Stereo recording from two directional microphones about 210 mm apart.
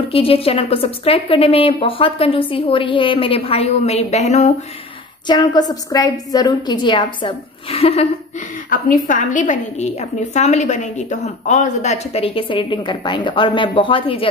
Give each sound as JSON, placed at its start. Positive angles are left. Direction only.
{"t": 0.1, "sound": "a woman's voice", "side_deg": 25}
{"t": 5.2, "sound": "a woman's voice", "side_deg": 20}
{"t": 8.6, "sound": "a woman's voice", "side_deg": 40}